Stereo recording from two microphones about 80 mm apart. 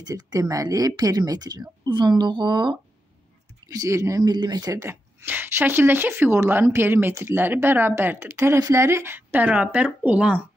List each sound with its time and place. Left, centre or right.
0.0 s speech: right
3.6 s speech: right
4.3 s speech: right
4.7 s speech: right